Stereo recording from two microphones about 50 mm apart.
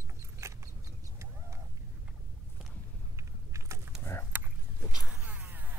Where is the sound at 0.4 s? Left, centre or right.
Right.